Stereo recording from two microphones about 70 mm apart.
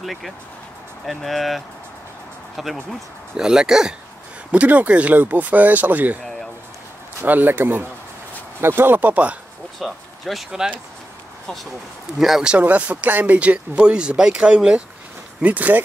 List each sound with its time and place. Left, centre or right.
0.0 s speech: centre
4.5 s speech: right
7.2 s speech: right
9.8 s speech: centre
12.2 s speech: centre
12.5 s speech: centre